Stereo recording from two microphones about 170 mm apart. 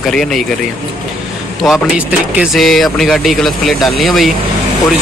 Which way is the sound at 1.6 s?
5° right (ahead or behind).